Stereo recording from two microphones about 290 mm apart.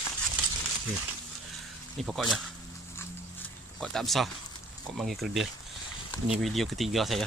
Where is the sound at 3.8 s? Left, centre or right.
Centre.